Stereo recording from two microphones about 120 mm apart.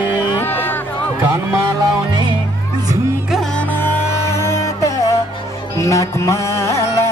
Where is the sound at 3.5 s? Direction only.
15° left (ahead or behind).